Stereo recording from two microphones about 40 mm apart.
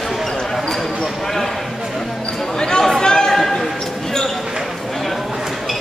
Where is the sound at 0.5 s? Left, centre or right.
Centre.